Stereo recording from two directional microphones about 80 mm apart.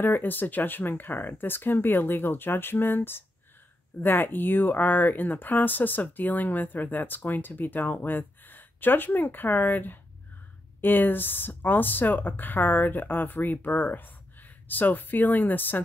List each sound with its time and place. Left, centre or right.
0.0 s speech: left